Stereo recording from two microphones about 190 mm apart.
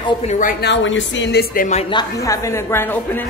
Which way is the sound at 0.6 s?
75° left (ahead or behind).